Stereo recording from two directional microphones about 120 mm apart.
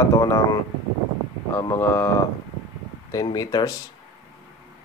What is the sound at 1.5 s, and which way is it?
Speech, 20° left (ahead or behind).